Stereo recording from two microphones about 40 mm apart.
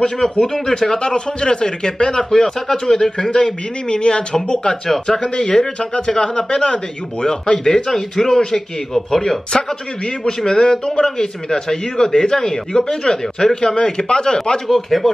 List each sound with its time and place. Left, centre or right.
0.0 s speech: centre
10.2 s speech: left
14.7 s speech: centre